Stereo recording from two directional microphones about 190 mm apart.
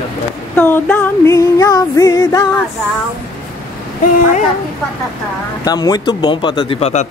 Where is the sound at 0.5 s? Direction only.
10° left (ahead or behind).